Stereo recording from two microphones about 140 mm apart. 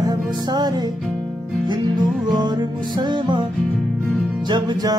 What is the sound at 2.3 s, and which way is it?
Music, 30° right (ahead or behind).